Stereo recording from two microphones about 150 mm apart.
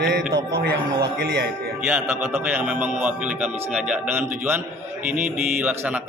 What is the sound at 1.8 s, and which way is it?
Speech, 15° right (ahead or behind).